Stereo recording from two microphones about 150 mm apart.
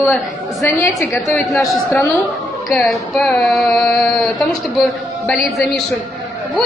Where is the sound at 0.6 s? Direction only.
20° left (ahead or behind).